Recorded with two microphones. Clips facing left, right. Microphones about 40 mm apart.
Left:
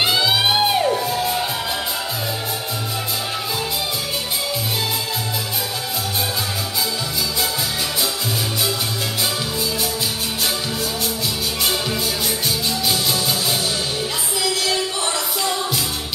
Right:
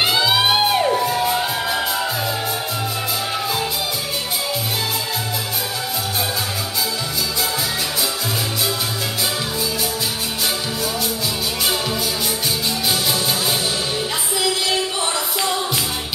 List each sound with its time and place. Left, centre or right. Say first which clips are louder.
0.0 s music: right 1 dB; centre
0.9 s music: right 2 dB; right